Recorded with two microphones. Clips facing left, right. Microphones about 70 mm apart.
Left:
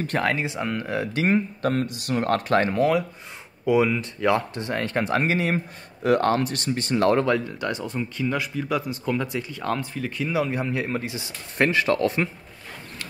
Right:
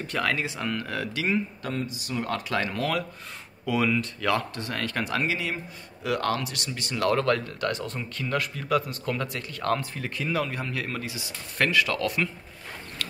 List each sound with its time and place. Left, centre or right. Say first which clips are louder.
0.2 s speech: even; left
1.1 s speech: left 5 dB; left
2.7 s speech: left 7 dB; left
7.2 s speech: left 2 dB; centre
10.5 s speech: left 6 dB; left